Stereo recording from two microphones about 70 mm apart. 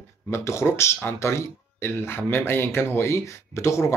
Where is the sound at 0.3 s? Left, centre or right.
Left.